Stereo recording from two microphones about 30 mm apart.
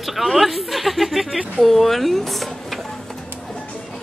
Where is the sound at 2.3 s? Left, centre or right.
Centre.